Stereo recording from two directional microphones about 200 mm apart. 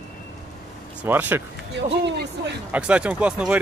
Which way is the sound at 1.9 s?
60° right (ahead or behind).